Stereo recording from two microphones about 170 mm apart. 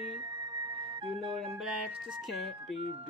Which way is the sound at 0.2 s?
25° right (ahead or behind).